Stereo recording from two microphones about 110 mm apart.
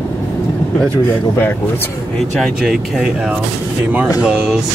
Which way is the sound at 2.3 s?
Centre (ahead or behind).